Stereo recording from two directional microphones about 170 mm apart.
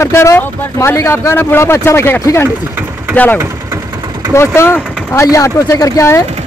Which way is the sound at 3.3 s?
15° right (ahead or behind).